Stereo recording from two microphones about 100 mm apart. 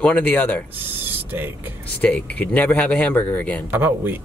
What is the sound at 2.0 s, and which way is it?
Speech, 15° left (ahead or behind).